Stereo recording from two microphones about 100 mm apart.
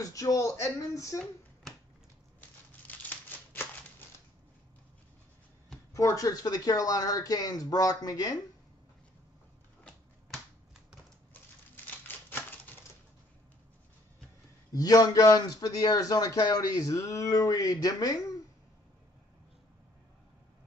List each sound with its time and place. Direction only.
0.0 s a man's voice: 35° left (ahead or behind)
1.1 s speech: 5° left (ahead or behind)
2.9 s crumpling: 20° left (ahead or behind)
5.9 s a man's voice: 35° left (ahead or behind)
10.3 s finger snapping: 5° right (ahead or behind)
12.3 s typewriter: 20° left (ahead or behind)
14.7 s a man's voice: 40° left (ahead or behind)